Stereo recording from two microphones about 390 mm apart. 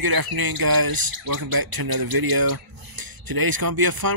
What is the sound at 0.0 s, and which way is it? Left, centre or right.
Speech, right.